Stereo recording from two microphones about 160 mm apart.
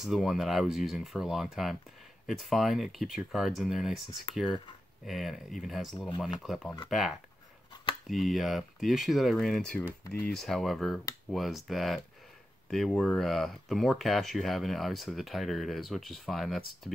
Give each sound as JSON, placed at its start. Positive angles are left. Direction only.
{"t": 0.0, "sound": "speech", "side_deg": 0}
{"t": 5.0, "sound": "speech", "side_deg": 0}
{"t": 5.9, "sound": "speech", "side_deg": 25}
{"t": 6.2, "sound": "speech", "side_deg": 0}